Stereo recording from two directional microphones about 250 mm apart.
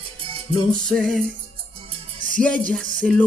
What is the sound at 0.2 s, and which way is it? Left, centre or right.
Music, right.